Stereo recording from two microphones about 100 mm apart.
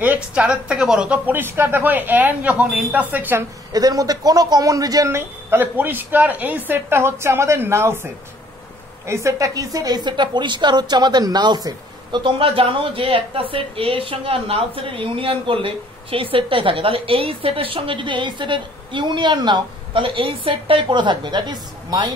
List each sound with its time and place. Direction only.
0.0 s a woman's voice: 15° right (ahead or behind)
3.7 s speech: 40° right (ahead or behind)
5.1 s a woman's voice: 20° right (ahead or behind); by 22.1 s 45° right (ahead or behind)